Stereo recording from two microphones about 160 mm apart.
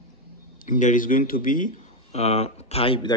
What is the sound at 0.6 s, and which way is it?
Speech, 55° left (ahead or behind).